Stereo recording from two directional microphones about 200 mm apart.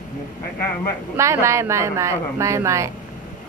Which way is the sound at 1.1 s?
15° right (ahead or behind).